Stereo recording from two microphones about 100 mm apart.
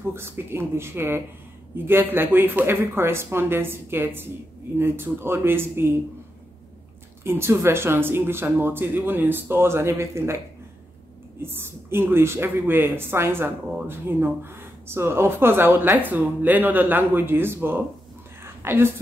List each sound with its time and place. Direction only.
0.0 s speech: 25° right (ahead or behind)
7.2 s speech: 25° right (ahead or behind)
11.4 s speech: 25° right (ahead or behind)
18.4 s a sound: 25° right (ahead or behind)